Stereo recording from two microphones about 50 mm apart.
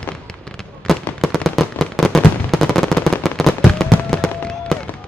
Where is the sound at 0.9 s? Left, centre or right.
Centre.